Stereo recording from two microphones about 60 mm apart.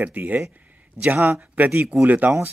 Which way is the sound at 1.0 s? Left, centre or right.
Right.